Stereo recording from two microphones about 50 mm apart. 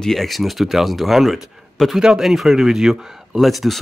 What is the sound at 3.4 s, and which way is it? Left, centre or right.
Speech, centre.